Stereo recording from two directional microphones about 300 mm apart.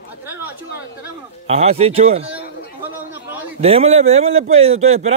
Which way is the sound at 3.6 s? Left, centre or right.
Right.